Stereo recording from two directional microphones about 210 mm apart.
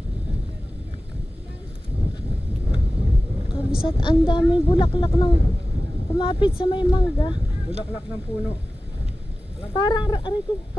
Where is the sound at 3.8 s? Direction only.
25° left (ahead or behind).